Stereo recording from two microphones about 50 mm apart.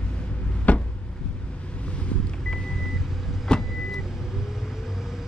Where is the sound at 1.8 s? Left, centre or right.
Left.